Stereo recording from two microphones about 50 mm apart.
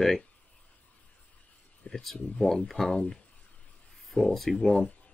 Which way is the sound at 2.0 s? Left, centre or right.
Centre.